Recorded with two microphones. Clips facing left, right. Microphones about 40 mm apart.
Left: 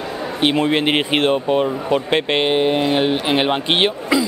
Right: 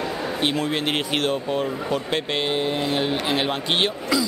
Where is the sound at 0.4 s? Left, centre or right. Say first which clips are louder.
Left 8 dB; left.